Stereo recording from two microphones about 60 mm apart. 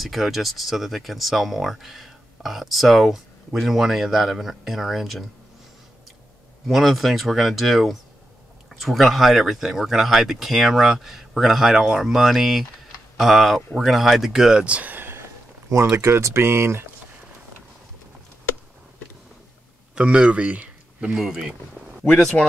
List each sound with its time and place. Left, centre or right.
0.0 s speech: centre
6.7 s speech: centre
14.8 s a sound: right
15.7 s speech: right
20.0 s speech: centre
21.2 s speech: centre
22.4 s speech: centre